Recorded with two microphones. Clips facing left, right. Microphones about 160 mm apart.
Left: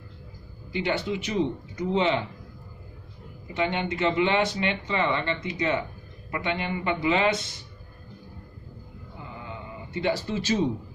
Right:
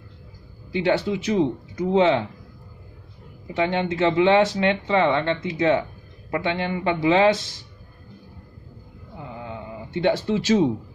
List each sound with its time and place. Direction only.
0.8 s speech: 75° right (ahead or behind)
3.5 s speech: 90° right
9.9 s speech: 80° right